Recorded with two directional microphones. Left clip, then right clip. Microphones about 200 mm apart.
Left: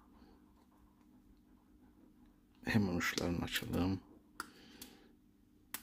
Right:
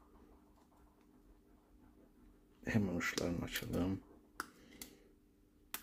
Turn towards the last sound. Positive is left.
turn(degrees=15)  # may be behind; listen again after turning